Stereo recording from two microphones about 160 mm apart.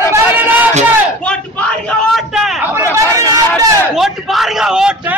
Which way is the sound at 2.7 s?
15° right (ahead or behind).